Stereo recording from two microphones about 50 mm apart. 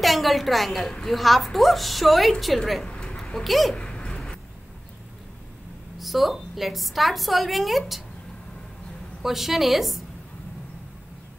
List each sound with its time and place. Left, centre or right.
0.0 s a woman's voice: centre
2.8 s a sound: left
3.4 s a woman's voice: centre
3.7 s a sound: centre
5.9 s a woman's voice: centre
9.2 s a woman's voice: centre